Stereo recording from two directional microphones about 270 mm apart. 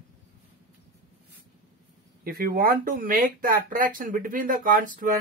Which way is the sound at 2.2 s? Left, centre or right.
Right.